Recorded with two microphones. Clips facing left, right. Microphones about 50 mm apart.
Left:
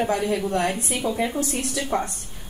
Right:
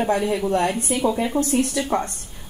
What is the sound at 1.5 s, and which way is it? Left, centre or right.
Speech, centre.